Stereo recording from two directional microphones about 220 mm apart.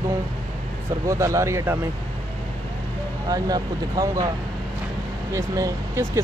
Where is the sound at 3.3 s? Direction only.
15° right (ahead or behind).